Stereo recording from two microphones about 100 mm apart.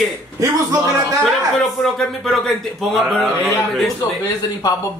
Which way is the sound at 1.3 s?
5° left (ahead or behind).